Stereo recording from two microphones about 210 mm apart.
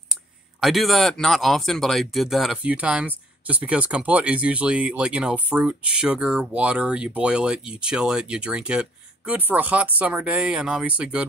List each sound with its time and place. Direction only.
0.6 s speech: centre (ahead or behind)